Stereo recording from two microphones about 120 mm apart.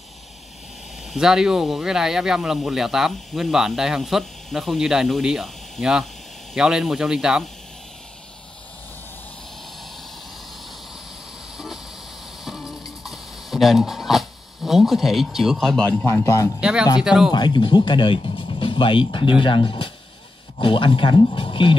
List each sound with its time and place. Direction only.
1.1 s speech: 5° right (ahead or behind)
11.5 s vehicle: 5° right (ahead or behind)
12.4 s a sound: 5° right (ahead or behind)
15.9 s a man's voice: 20° left (ahead or behind)
16.5 s speech: 5° right (ahead or behind)
17.3 s speech: 40° left (ahead or behind)